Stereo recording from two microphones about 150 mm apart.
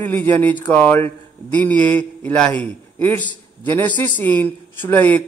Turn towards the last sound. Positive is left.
turn(degrees=10)  # may be behind; listen again after turning